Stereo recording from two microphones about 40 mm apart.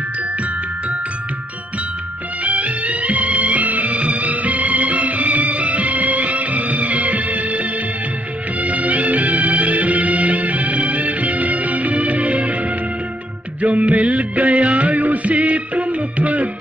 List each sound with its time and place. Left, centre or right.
2.4 s music: right